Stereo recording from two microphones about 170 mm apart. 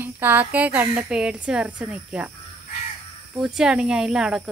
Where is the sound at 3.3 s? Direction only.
5° right (ahead or behind).